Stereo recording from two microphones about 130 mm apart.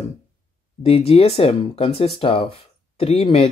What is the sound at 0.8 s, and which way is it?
Speech, 50° left (ahead or behind).